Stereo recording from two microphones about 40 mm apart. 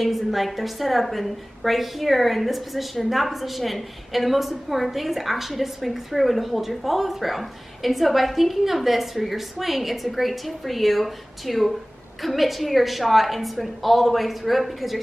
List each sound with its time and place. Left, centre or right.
0.0 s a woman's voice: centre